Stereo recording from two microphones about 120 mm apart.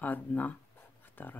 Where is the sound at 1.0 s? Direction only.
15° left (ahead or behind).